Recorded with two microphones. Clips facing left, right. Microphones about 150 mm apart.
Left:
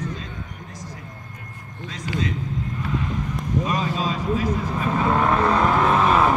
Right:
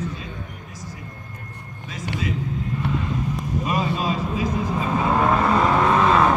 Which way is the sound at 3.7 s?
10° right (ahead or behind).